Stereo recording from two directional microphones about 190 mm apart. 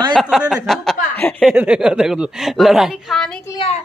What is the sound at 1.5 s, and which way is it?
Speech, 5° right (ahead or behind).